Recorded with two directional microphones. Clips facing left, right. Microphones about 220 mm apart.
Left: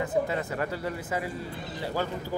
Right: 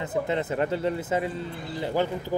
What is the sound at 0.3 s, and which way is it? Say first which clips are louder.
Speech: right 5 dB; 25° right (ahead or behind).